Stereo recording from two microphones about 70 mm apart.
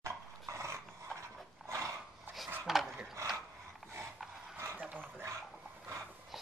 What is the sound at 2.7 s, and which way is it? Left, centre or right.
Dog, centre.